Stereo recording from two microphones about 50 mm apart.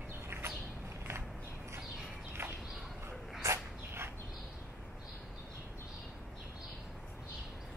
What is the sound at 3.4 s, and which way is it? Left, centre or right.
Dog, right.